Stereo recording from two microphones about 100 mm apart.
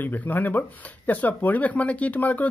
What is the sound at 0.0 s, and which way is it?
Speech, 20° left (ahead or behind).